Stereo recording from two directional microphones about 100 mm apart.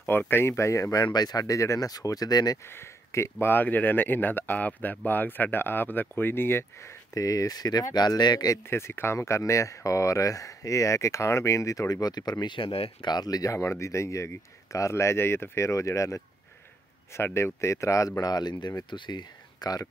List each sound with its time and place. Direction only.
0.0 s speech: 20° left (ahead or behind)
1.0 s speech: 40° left (ahead or behind)
2.7 s speech: 25° left (ahead or behind)
7.2 s speech: 35° left (ahead or behind)
8.6 s speech: 25° left (ahead or behind); by 12.9 s 65° left (ahead or behind)
13.0 s speech: 45° left (ahead or behind)